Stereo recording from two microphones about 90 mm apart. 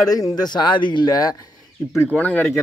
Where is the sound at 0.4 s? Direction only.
55° left (ahead or behind).